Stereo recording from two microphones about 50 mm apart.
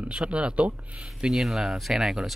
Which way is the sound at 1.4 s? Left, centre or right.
Centre.